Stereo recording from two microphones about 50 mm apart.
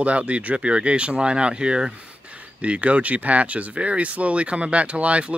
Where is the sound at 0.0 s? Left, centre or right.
Right.